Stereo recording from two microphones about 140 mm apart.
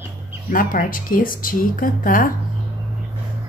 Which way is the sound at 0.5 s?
80° left.